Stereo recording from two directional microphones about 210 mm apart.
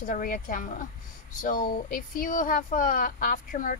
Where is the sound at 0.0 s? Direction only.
40° left (ahead or behind).